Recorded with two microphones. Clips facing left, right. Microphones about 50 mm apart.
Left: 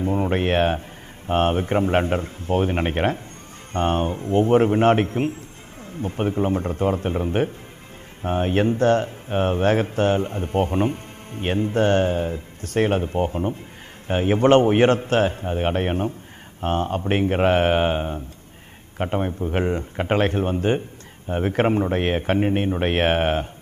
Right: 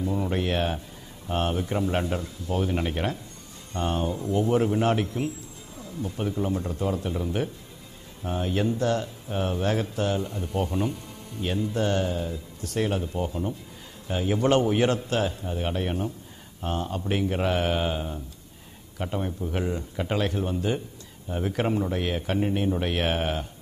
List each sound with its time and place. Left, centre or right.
0.0 s speech: left